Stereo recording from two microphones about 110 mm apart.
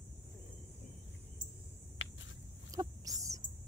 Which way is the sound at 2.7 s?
30° right (ahead or behind).